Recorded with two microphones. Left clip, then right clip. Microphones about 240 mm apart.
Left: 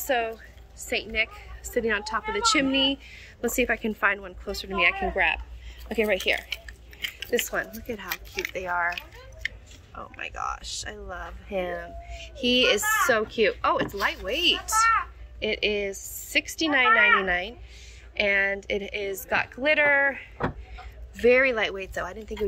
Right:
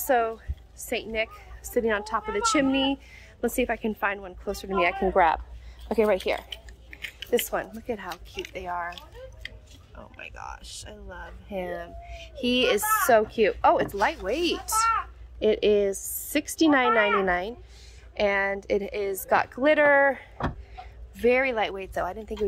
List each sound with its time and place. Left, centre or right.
0.0 s a woman's voice: centre
10.2 s a woman's voice: centre